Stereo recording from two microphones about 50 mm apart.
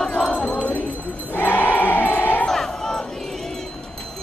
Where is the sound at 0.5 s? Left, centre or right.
Left.